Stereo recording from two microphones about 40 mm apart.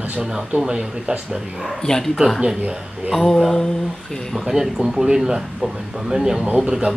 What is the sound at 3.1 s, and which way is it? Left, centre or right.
Speech, centre.